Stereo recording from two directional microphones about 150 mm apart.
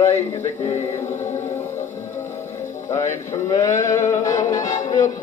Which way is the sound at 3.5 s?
20° left (ahead or behind).